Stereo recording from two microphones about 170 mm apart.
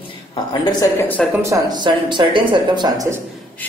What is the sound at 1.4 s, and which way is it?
Speech, 20° right (ahead or behind).